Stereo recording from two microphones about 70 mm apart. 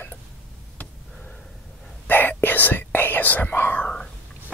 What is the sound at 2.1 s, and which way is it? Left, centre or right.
Whispering, left.